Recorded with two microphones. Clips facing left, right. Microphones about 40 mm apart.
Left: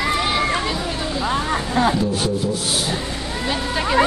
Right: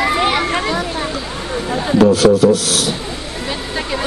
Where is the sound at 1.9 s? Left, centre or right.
Right.